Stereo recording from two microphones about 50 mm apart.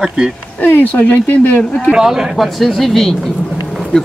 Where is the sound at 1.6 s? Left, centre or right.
Centre.